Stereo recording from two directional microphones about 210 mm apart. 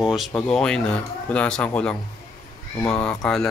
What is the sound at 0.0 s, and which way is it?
Speech, centre (ahead or behind).